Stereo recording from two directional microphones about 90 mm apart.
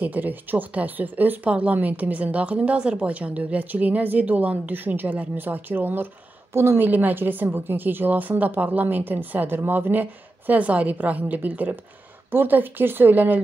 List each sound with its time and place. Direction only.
0.0 s a woman's voice: 20° right (ahead or behind)